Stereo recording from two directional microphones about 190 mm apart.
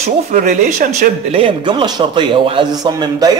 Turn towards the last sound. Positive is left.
turn(degrees=-20)  # may be behind; listen again after turning